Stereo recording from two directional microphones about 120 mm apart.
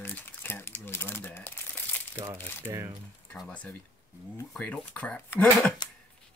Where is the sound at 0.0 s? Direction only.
15° left (ahead or behind).